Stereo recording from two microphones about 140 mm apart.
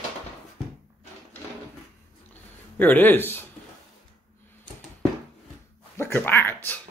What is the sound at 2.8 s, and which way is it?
Speech, 15° left (ahead or behind).